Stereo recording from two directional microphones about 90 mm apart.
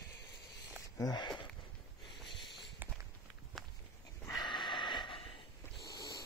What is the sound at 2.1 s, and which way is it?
Snort, centre (ahead or behind).